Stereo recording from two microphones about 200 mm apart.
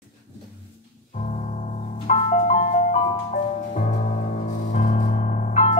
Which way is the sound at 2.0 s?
35° left (ahead or behind).